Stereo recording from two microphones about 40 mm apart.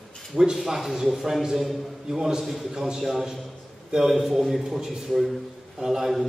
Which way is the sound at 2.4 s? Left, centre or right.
Centre.